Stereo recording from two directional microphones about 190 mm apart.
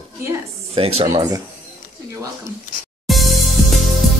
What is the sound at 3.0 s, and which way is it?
Music, centre (ahead or behind).